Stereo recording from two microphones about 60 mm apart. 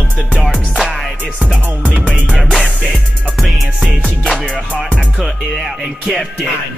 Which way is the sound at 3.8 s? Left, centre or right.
Centre.